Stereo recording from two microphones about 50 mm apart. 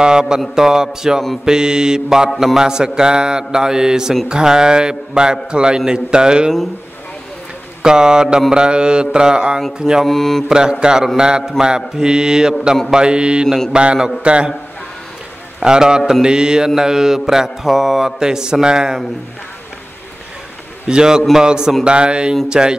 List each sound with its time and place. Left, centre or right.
0.0 s mantra: centre
7.8 s mantra: centre
10.0 s mantra: centre
10.5 s mantra: centre
15.6 s mantra: centre
20.8 s mantra: centre